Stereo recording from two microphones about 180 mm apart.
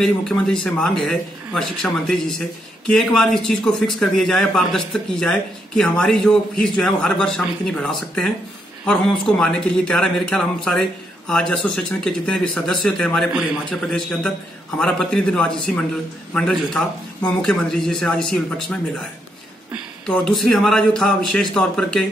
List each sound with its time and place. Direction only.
0.0 s speech: 5° left (ahead or behind)
20.1 s speech: 5° left (ahead or behind)